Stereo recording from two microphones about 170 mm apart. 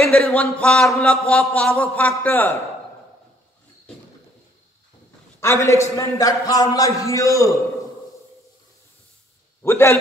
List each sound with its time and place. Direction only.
0.0 s a man's voice: 5° left (ahead or behind)
5.4 s a man's voice: 15° left (ahead or behind)
9.6 s a man's voice: 15° left (ahead or behind)